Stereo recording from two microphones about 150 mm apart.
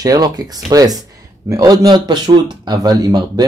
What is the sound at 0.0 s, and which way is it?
Speech, 25° right (ahead or behind).